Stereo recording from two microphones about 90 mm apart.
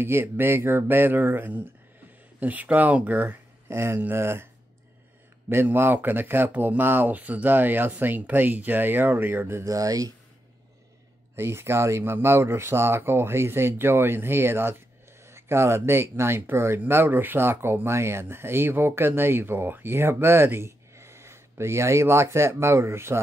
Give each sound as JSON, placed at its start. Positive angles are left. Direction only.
{"t": 0.0, "sound": "speech", "side_deg": -25}
{"t": 3.6, "sound": "speech", "side_deg": -30}
{"t": 5.5, "sound": "speech", "side_deg": -25}
{"t": 11.3, "sound": "speech", "side_deg": -30}